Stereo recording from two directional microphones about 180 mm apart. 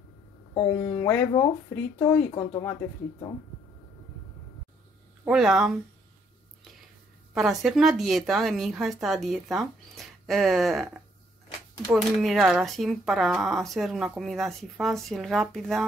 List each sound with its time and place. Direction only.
0.6 s speech: 15° left (ahead or behind)
5.2 s speech: 5° right (ahead or behind)
7.3 s speech: centre (ahead or behind)